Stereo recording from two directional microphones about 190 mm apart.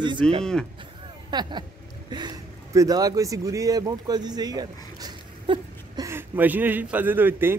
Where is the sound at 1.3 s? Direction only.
20° right (ahead or behind).